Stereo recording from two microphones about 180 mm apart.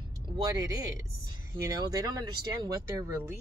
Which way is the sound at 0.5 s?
20° right (ahead or behind).